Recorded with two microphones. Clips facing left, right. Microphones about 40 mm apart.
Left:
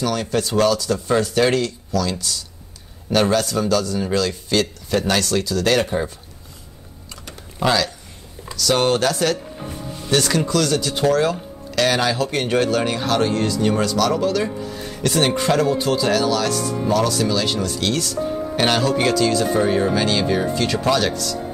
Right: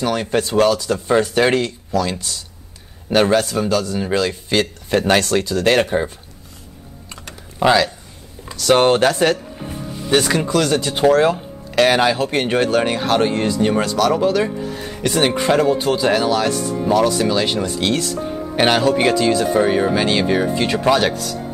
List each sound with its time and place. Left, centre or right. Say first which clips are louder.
0.0 s speech: right 2 dB; right
7.5 s speech: right 5 dB; right
8.5 s speech: right 5 dB; right
9.6 s music: right 2 dB; centre
10.1 s speech: right 2 dB; centre